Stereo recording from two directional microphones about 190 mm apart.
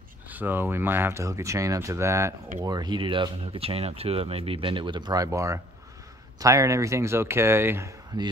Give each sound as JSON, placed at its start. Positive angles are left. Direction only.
{"t": 0.3, "sound": "speech", "side_deg": -10}